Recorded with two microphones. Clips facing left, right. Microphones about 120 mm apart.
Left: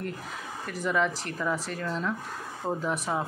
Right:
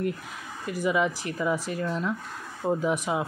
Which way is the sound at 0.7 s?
10° right (ahead or behind).